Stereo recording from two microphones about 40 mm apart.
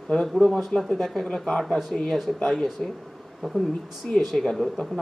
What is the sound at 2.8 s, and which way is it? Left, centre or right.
Speech, centre.